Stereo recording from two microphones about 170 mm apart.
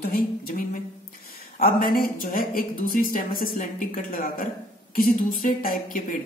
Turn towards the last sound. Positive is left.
turn(degrees=55)  # may be behind; listen again after turning